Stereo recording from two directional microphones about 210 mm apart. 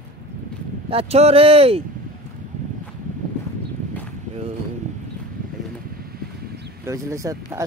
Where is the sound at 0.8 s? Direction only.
30° right (ahead or behind).